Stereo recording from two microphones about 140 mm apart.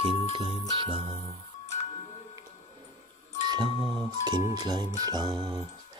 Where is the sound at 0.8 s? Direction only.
40° right (ahead or behind).